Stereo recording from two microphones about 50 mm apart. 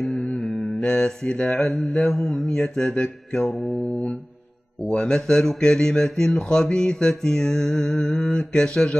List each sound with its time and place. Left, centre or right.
0.0 s mantra: centre
3.6 s mantra: centre
4.9 s mantra: centre